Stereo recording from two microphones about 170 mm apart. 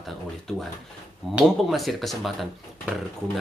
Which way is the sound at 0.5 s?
5° left (ahead or behind).